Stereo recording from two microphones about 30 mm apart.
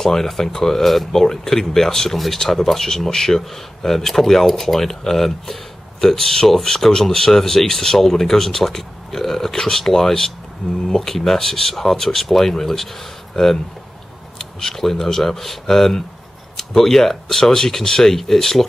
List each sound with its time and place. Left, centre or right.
0.0 s speech: centre
1.2 s speech: centre
14.4 s speech: centre